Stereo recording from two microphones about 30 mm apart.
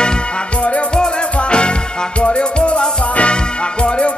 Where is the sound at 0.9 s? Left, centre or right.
Left.